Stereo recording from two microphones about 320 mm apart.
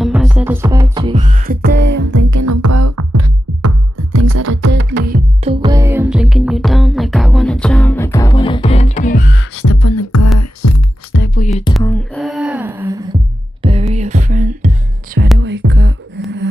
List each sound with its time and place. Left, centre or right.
0.0 s music: centre; by 2.1 s right
2.1 s music: right
5.5 s music: centre; by 9.2 s left
9.6 s beatboxing: left
10.6 s music: left
11.1 s music: left
11.8 s a sound: centre
13.6 s music: centre
15.3 s music: right